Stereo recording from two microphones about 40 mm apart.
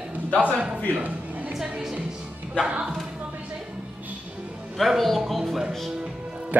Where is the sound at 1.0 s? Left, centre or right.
Right.